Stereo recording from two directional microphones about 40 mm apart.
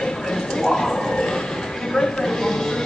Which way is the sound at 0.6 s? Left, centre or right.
Centre.